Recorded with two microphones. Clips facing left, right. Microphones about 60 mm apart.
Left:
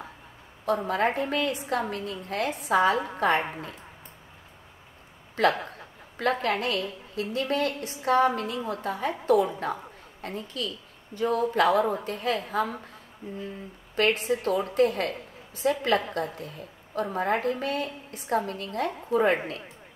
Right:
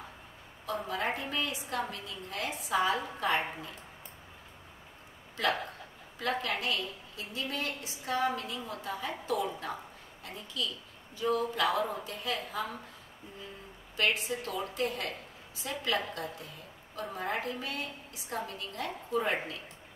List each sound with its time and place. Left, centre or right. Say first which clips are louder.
0.8 s a woman's voice: left 6 dB; left
5.4 s a woman's voice: left 7 dB; left
13.9 s a woman's voice: left 7 dB; left